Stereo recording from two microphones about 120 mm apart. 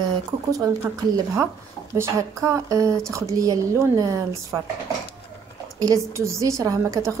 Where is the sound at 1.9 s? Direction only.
25° right (ahead or behind).